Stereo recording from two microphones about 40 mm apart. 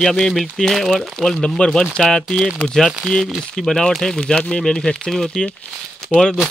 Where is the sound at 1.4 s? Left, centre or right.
Left.